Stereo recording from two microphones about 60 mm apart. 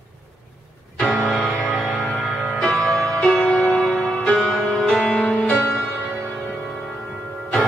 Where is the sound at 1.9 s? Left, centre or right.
Centre.